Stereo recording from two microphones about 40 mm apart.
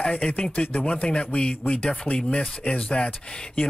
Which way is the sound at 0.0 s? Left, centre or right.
Left.